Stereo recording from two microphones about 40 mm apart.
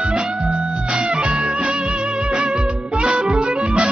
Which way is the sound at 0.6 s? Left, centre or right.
Right.